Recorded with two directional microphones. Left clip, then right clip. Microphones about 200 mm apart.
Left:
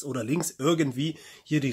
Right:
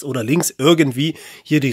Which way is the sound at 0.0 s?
50° right (ahead or behind).